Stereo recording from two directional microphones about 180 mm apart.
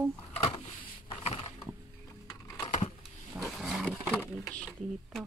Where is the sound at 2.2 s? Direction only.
20° left (ahead or behind).